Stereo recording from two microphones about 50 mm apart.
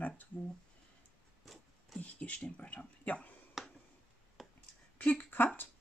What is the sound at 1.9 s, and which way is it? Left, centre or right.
Speech, left.